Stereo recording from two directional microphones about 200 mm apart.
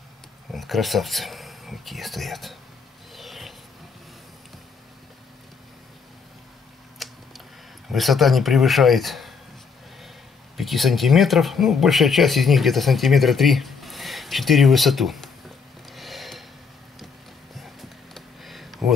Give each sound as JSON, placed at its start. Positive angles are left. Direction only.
{"t": 0.5, "sound": "speech", "side_deg": 0}
{"t": 3.2, "sound": "filing", "side_deg": 0}
{"t": 7.0, "sound": "a sound", "side_deg": 0}
{"t": 7.9, "sound": "speech", "side_deg": 0}
{"t": 10.6, "sound": "speech", "side_deg": 0}
{"t": 15.9, "sound": "a sound", "side_deg": 0}
{"t": 17.6, "sound": "computer keyboard", "side_deg": 0}